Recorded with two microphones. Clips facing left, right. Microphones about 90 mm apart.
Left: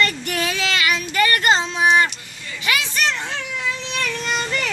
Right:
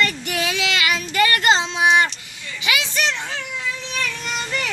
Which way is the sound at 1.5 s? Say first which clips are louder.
Even; 20° right (ahead or behind).